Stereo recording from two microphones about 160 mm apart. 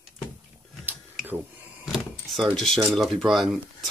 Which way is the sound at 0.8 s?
10° right (ahead or behind).